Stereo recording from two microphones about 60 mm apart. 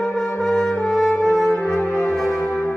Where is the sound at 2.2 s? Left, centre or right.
Left.